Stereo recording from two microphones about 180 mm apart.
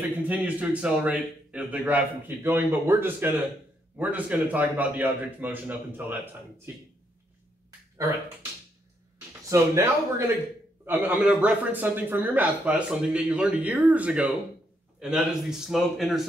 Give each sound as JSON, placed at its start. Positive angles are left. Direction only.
{"t": 0.3, "sound": "a man's voice", "side_deg": -5}
{"t": 9.5, "sound": "a man's voice", "side_deg": -15}